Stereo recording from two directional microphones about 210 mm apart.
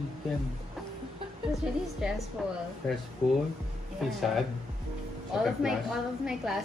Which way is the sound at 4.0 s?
Centre (ahead or behind).